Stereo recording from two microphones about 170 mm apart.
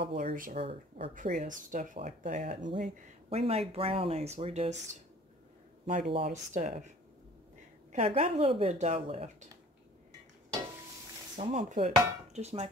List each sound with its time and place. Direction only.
0.2 s speech: 50° right (ahead or behind)
0.6 s speech: 35° right (ahead or behind)
1.1 s speech: 50° right (ahead or behind)
2.8 s speech: 40° right (ahead or behind)
5.9 s speech: 40° right (ahead or behind)
7.9 s speech: 35° right (ahead or behind)
11.3 s speech: 45° right (ahead or behind)